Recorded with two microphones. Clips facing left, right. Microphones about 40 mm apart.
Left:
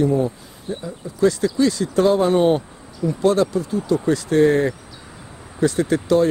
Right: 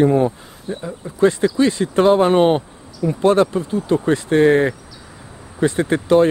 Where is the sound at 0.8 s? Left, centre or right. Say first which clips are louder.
Right 2 dB; right.